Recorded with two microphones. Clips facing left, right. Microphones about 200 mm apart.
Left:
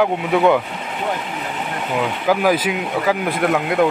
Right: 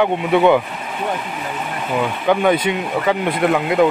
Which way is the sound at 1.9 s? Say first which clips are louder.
Right 1 dB; 5° left (ahead or behind).